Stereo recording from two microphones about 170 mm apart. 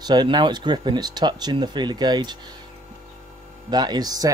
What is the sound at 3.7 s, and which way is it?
Speech, 25° right (ahead or behind).